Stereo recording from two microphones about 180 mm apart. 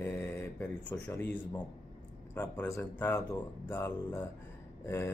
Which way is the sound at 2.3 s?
10° left (ahead or behind).